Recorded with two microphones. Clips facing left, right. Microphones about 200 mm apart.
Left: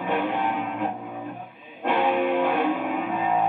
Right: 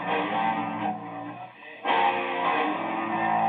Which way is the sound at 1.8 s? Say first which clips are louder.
Left 5 dB; 50° left (ahead or behind).